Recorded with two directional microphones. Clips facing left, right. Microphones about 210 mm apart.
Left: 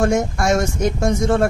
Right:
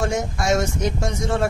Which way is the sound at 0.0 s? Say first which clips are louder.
Left 6 dB; 50° left (ahead or behind).